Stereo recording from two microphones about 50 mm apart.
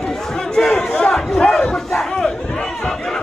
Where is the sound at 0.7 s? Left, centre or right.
Centre.